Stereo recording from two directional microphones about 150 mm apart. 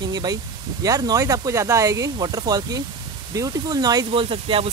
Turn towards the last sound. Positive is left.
turn(degrees=-40)  # may be behind; listen again after turning